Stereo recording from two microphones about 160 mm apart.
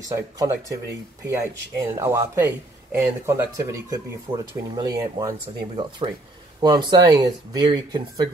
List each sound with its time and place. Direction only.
0.0 s speech: 20° right (ahead or behind)